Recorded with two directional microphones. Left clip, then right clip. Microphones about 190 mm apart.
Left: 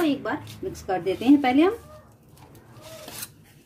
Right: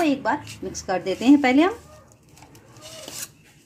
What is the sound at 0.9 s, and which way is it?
Speech, 40° right (ahead or behind).